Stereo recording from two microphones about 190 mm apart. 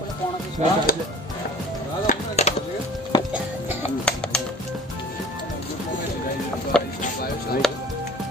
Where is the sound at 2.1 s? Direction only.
35° left (ahead or behind).